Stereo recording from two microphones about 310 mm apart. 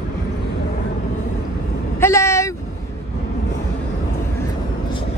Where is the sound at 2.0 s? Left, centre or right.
Centre.